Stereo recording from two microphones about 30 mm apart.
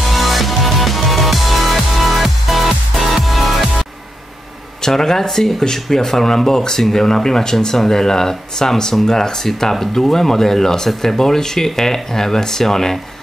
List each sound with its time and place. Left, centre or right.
0.0 s music: centre
4.8 s speech: centre